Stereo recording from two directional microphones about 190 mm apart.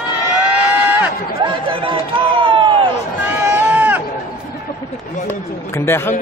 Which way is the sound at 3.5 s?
10° right (ahead or behind).